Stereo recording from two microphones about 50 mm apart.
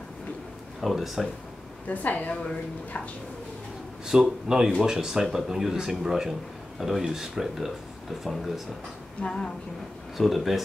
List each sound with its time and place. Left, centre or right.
0.7 s speech: centre
1.9 s a woman's voice: left
4.0 s speech: centre
9.2 s a woman's voice: centre
10.1 s speech: centre